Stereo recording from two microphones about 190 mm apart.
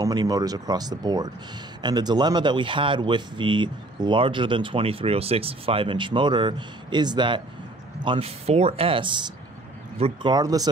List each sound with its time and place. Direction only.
0.0 s speech: 20° right (ahead or behind)